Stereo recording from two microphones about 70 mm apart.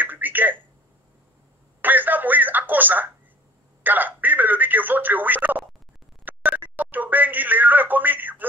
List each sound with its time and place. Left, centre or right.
0.0 s a sound: right
1.8 s telephone: right
6.2 s telephone dialing: right